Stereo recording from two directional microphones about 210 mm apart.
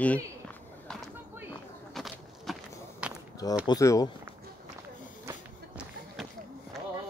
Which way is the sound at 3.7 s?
15° left (ahead or behind).